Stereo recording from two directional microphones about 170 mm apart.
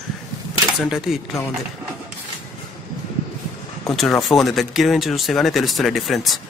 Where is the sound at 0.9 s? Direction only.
Centre (ahead or behind).